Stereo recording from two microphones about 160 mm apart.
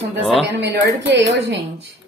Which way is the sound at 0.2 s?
Centre (ahead or behind).